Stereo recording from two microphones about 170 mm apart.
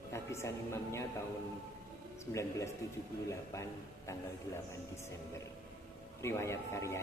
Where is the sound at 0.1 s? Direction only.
15° left (ahead or behind).